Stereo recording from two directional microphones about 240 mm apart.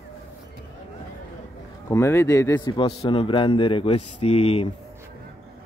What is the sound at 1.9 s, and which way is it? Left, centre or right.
A man's voice, centre.